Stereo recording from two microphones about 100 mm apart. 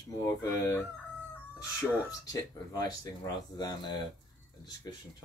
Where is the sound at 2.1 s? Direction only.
35° left (ahead or behind).